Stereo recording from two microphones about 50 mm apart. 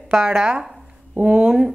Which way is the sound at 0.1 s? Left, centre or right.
Centre.